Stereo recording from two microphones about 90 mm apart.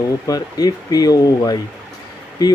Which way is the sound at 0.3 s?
45° left (ahead or behind).